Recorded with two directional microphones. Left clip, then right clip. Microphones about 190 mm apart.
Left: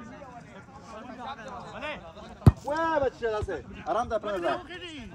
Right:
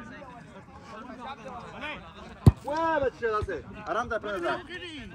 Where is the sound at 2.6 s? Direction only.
10° left (ahead or behind).